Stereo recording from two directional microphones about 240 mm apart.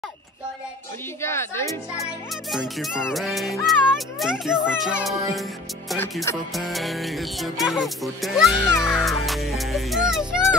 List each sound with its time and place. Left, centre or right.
1.2 s speech: centre
2.5 s music: centre
5.9 s speech: centre
6.5 s music: centre